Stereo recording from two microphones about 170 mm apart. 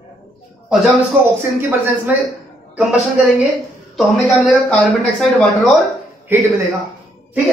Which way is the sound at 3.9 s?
5° left (ahead or behind).